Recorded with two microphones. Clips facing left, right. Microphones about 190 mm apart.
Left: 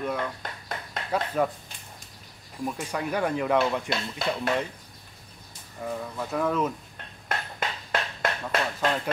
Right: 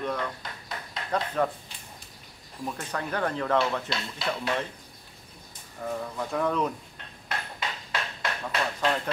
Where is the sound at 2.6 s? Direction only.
10° left (ahead or behind).